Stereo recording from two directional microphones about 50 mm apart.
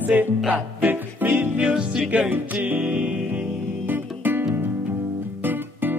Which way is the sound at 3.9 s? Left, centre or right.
Right.